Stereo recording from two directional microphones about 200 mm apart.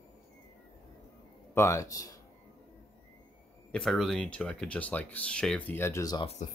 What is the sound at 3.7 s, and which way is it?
Speech, centre (ahead or behind).